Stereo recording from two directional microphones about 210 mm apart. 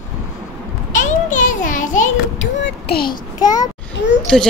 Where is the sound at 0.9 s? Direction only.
35° left (ahead or behind).